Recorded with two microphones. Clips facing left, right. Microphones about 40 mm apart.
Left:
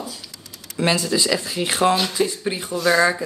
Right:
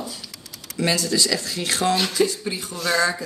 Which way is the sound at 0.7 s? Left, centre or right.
Left.